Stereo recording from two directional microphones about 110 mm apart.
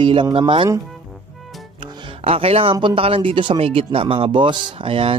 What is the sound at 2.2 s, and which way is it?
Speech, 60° right (ahead or behind).